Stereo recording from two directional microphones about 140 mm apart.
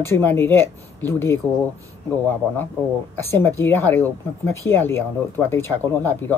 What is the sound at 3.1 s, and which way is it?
Speech, 15° left (ahead or behind).